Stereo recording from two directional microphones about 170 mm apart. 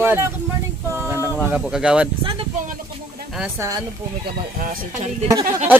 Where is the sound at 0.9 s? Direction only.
15° right (ahead or behind).